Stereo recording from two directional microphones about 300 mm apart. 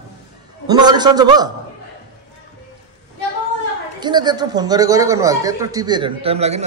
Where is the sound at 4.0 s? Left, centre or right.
Centre.